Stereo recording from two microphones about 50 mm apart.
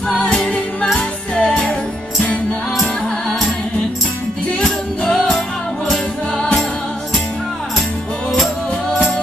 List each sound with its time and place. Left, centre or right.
0.1 s music: centre
1.6 s music: centre
3.3 s music: centre
4.6 s music: centre
6.3 s music: left